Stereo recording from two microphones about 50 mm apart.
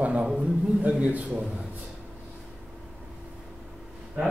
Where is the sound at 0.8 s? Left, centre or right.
Right.